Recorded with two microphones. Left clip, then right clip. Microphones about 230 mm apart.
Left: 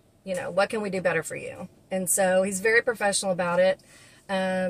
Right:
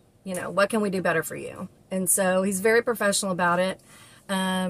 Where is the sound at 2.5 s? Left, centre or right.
Centre.